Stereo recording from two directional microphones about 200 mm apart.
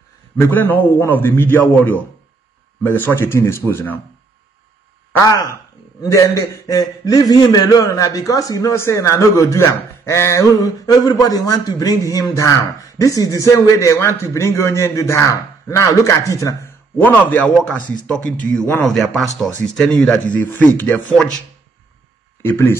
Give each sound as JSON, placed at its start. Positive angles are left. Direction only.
{"t": 0.4, "sound": "a man's voice", "side_deg": 10}
{"t": 5.1, "sound": "a man's voice", "side_deg": 15}
{"t": 18.9, "sound": "a man's voice", "side_deg": 0}
{"t": 22.4, "sound": "a man's voice", "side_deg": 10}